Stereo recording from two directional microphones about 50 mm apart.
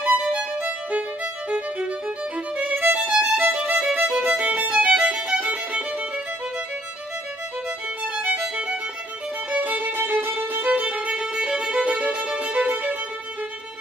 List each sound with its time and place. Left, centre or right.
0.0 s music: right
2.5 s violin: right
3.1 s violin: centre
3.5 s violin: right
4.7 s music: right
8.2 s violin: right
9.5 s music: right